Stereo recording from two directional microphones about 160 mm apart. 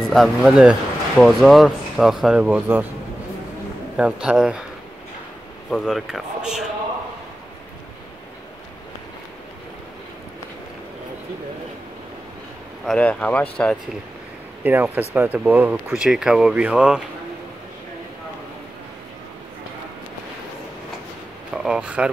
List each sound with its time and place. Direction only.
0.1 s speech: centre (ahead or behind)
3.9 s speech: 5° right (ahead or behind)
5.7 s speech: centre (ahead or behind)
12.8 s speech: 10° left (ahead or behind)
14.6 s speech: 10° right (ahead or behind)
21.5 s speech: 5° right (ahead or behind)